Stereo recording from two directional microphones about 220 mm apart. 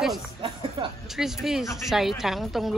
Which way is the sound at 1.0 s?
Centre (ahead or behind).